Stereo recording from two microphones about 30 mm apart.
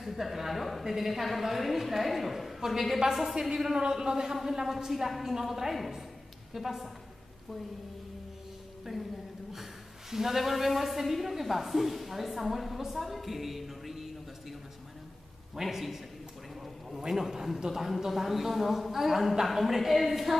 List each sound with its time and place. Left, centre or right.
0.0 s a woman's voice: centre
2.6 s a man's voice: centre
8.9 s a man's voice: centre
10.1 s a woman's voice: centre
15.5 s a man's voice: centre
17.1 s a man's voice: centre